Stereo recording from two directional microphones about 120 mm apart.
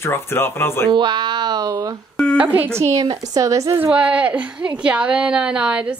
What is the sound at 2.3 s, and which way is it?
A woman's voice, 15° right (ahead or behind).